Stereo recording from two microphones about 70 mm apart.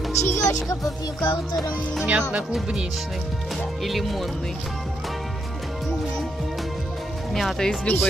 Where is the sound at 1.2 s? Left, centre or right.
Left.